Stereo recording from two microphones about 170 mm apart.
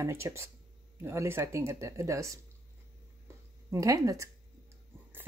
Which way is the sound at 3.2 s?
20° right (ahead or behind).